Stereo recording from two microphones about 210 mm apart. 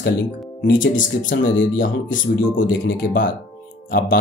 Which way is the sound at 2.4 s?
55° left (ahead or behind).